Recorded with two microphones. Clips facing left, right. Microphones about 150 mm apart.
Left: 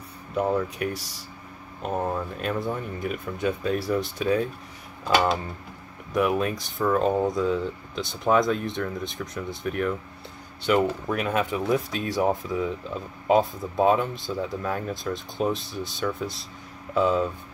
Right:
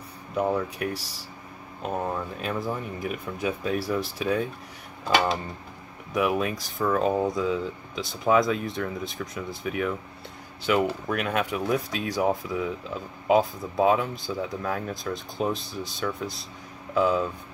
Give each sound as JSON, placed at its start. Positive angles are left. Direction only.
{"t": 0.4, "sound": "speech", "side_deg": 0}
{"t": 6.1, "sound": "speech", "side_deg": 0}